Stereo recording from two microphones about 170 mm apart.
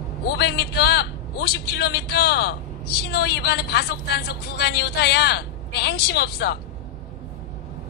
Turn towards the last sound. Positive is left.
turn(degrees=70)  # may be behind; listen again after turning